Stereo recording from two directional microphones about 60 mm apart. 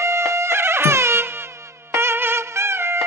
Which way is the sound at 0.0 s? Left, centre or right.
Right.